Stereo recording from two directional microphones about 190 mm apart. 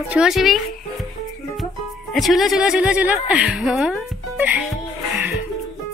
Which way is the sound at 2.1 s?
Centre (ahead or behind).